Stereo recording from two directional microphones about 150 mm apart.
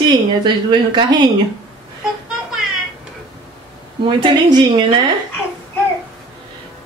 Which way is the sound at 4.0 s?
30° right (ahead or behind).